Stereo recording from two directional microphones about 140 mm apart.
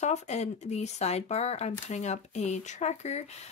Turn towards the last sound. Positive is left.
turn(degrees=50)  # may be behind; listen again after turning